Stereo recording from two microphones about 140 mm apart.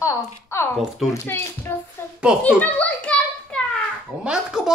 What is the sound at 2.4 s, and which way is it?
Children playing, 10° left (ahead or behind).